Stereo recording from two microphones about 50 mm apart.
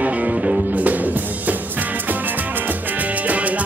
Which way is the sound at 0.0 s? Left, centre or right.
Right.